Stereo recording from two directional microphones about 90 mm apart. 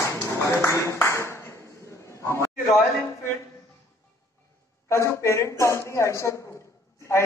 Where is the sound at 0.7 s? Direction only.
35° left (ahead or behind).